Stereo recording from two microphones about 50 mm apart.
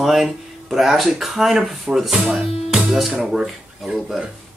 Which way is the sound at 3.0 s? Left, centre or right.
Centre.